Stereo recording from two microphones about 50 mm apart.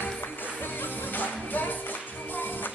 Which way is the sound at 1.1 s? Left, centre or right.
Left.